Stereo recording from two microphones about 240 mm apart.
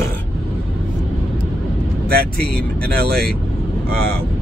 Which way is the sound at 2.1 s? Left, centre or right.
Right.